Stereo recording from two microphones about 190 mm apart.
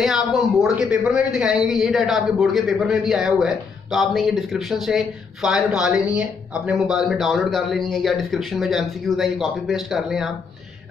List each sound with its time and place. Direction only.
0.0 s a woman's voice: centre (ahead or behind)